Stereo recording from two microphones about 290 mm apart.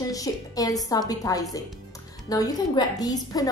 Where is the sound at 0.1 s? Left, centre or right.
Centre.